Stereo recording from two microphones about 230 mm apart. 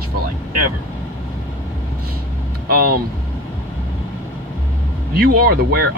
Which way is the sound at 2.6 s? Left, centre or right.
Right.